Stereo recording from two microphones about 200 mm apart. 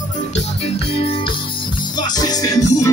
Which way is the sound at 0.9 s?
25° left (ahead or behind).